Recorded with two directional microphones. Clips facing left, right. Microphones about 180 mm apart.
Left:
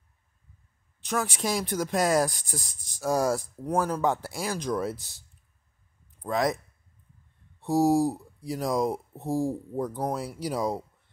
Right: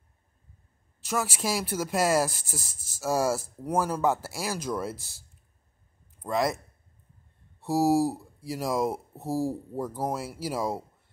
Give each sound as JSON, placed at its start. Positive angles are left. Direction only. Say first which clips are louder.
{"t": 1.0, "sound": "speech", "louder": "left 1 dB", "side_deg": -5}
{"t": 6.2, "sound": "speech", "louder": "left 1 dB", "side_deg": 0}
{"t": 7.6, "sound": "speech", "louder": "left 1 dB", "side_deg": -5}